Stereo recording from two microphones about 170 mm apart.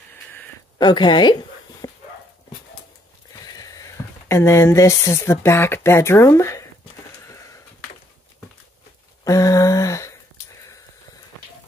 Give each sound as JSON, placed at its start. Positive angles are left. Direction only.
{"t": 0.7, "sound": "speech", "side_deg": 25}
{"t": 3.5, "sound": "speech", "side_deg": 20}
{"t": 9.2, "sound": "a sound", "side_deg": 20}